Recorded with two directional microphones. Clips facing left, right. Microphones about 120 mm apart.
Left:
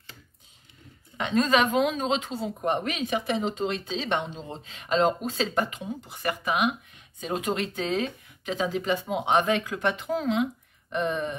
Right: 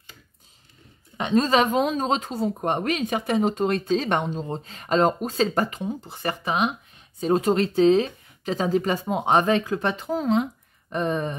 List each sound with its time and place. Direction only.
1.1 s speech: 30° right (ahead or behind)
8.5 s speech: 40° right (ahead or behind)